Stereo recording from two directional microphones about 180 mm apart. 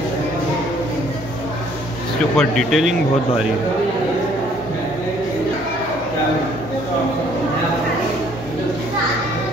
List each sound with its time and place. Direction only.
2.3 s speech: centre (ahead or behind)